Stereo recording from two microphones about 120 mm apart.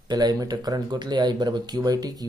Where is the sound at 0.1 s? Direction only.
35° right (ahead or behind).